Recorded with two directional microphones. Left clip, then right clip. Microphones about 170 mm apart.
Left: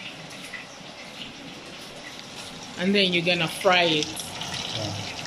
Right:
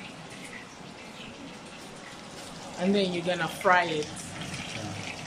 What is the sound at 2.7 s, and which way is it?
Speech, centre (ahead or behind).